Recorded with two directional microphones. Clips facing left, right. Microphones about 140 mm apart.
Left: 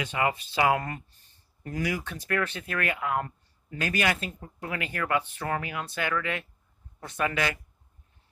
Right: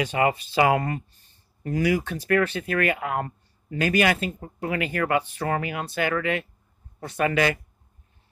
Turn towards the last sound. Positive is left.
turn(degrees=-75)  # may be behind; listen again after turning